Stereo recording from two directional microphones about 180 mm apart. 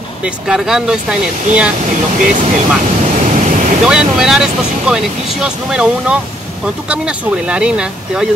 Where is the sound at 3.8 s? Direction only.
5° right (ahead or behind).